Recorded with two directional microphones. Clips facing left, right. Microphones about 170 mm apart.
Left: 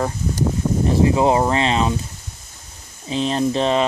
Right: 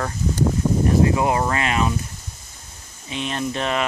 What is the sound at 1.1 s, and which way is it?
Speech, 25° left (ahead or behind).